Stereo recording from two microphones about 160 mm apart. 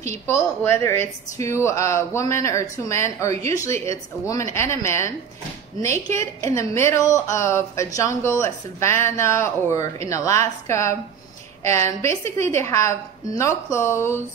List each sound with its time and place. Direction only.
0.0 s a woman's voice: 20° left (ahead or behind)
6.1 s a woman's voice: 20° left (ahead or behind)